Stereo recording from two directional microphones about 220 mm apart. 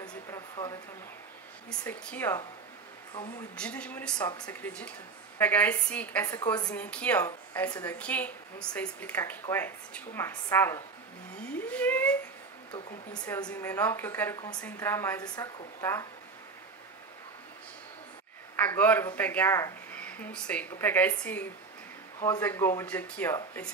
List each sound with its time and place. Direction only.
1.7 s speech: 5° left (ahead or behind)
3.5 s speech: 5° left (ahead or behind)
6.7 s speech: 5° left (ahead or behind)
11.7 s a sound: 5° left (ahead or behind)
13.2 s speech: 15° left (ahead or behind)
18.6 s speech: 5° left (ahead or behind)